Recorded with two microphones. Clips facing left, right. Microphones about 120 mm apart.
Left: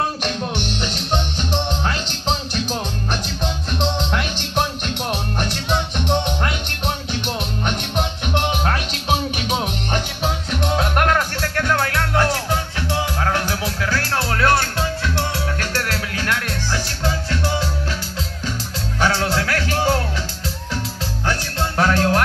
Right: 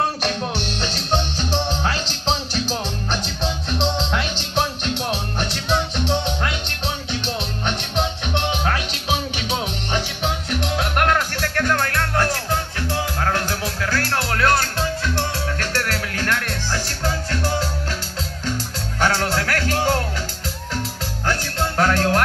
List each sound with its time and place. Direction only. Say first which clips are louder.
0.6 s music: left 1 dB; 35° right (ahead or behind)
3.8 s music: left 1 dB; centre (ahead or behind)
9.5 s music: left 1 dB; centre (ahead or behind)
10.6 s music: left 3 dB; 40° left (ahead or behind)
11.6 s music: left 1 dB; 10° left (ahead or behind)
18.9 s music: left 1 dB; 10° left (ahead or behind)
21.3 s music: right 1 dB; 10° left (ahead or behind)